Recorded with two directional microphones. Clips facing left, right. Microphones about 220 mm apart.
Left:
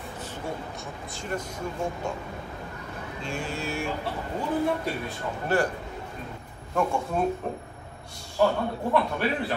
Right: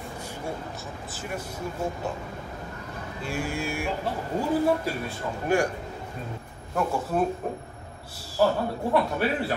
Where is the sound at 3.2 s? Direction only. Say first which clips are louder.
Right 3 dB; 10° right (ahead or behind).